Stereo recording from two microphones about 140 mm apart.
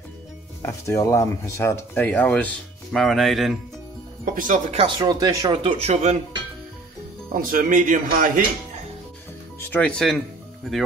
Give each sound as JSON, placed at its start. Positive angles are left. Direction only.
{"t": 0.6, "sound": "speech", "side_deg": 20}
{"t": 4.2, "sound": "speech", "side_deg": -70}
{"t": 4.7, "sound": "speech", "side_deg": -35}
{"t": 5.5, "sound": "speech", "side_deg": -40}
{"t": 7.3, "sound": "a man's voice", "side_deg": -70}
{"t": 9.6, "sound": "speech", "side_deg": 10}